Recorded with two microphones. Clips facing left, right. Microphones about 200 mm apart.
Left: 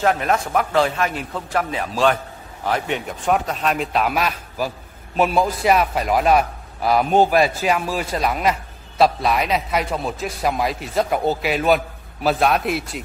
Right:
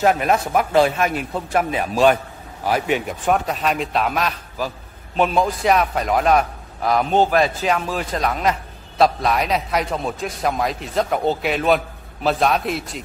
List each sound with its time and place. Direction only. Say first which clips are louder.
0.0 s a man's voice: right 2 dB; 15° right (ahead or behind); by 13.0 s 5° left (ahead or behind)